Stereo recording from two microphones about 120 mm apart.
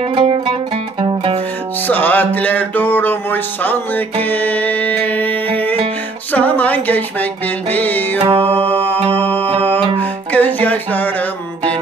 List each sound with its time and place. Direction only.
0.0 s music: 45° right (ahead or behind)
1.9 s music: 15° left (ahead or behind)
8.2 s music: 55° right (ahead or behind)
8.5 s music: 15° left (ahead or behind)